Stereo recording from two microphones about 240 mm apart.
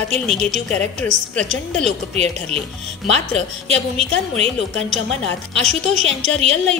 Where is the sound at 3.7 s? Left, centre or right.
Right.